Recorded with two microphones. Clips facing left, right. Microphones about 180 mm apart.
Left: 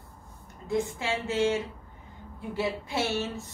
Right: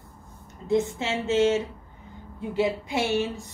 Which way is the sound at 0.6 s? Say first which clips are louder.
Right 5 dB; 25° right (ahead or behind).